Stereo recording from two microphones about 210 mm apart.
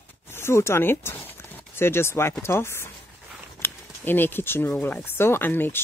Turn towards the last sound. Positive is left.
turn(degrees=10)  # may be behind; listen again after turning